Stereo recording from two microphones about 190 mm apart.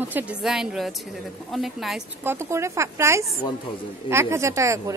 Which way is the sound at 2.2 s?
15° right (ahead or behind).